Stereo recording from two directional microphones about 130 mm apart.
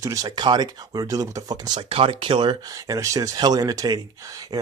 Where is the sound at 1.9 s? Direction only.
45° right (ahead or behind).